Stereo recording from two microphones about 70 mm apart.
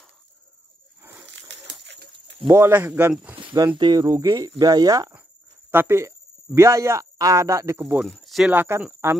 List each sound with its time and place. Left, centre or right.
2.4 s speech: right
3.5 s speech: right
5.7 s speech: right
8.0 s speech: centre
8.7 s speech: right